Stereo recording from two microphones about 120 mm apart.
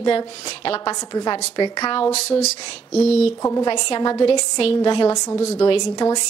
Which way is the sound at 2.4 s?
65° left (ahead or behind).